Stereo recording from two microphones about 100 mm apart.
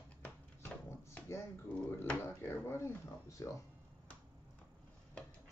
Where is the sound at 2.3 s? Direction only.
25° left (ahead or behind).